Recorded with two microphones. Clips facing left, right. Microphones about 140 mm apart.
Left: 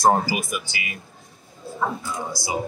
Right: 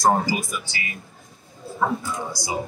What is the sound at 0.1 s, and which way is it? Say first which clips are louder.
Speech: even; 10° left (ahead or behind).